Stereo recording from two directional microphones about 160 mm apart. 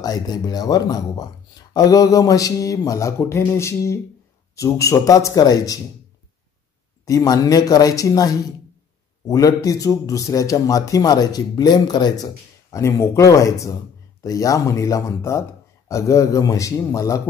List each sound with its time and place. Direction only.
0.0 s speech: 25° left (ahead or behind)
7.1 s speech: 20° left (ahead or behind)